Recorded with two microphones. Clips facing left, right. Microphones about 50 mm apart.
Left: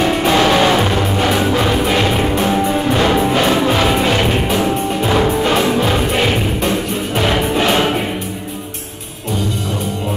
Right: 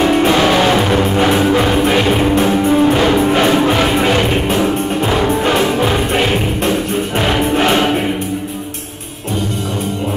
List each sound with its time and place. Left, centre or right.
0.3 s music: centre
0.9 s music: right
2.5 s music: centre
5.8 s music: centre
6.3 s music: right